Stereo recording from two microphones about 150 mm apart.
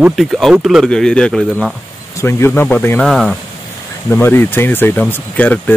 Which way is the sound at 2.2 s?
15° left (ahead or behind).